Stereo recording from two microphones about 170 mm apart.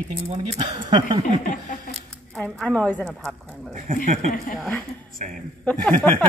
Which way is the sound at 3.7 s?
50° right (ahead or behind).